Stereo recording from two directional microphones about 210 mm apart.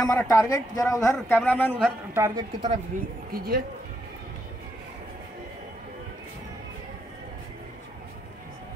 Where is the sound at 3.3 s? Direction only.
45° right (ahead or behind).